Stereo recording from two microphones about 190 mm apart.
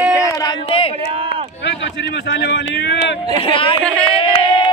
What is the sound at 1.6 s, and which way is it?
Speech, 65° left (ahead or behind).